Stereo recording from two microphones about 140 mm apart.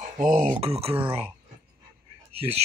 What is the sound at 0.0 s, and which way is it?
Speech, 60° right (ahead or behind).